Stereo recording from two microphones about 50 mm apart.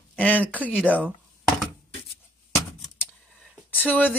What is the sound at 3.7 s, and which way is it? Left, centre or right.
Speech, left.